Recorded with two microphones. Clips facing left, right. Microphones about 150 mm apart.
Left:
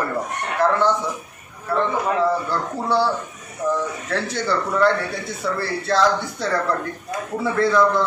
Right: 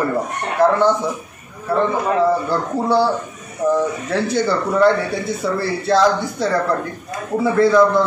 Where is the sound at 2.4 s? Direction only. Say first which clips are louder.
Right 5 dB; 15° right (ahead or behind).